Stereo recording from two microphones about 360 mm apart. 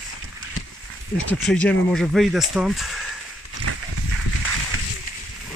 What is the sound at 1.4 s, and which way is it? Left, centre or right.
Speech, centre.